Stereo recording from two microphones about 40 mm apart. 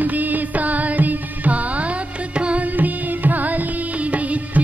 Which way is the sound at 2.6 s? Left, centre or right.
Right.